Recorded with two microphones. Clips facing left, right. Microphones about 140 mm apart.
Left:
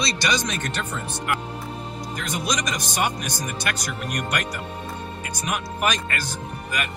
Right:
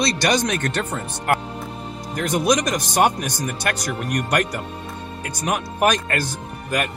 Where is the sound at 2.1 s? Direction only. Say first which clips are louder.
Right 9 dB; 55° right (ahead or behind).